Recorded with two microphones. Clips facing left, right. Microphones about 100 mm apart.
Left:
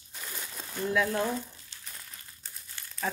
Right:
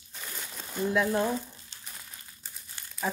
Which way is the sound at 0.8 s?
20° right (ahead or behind).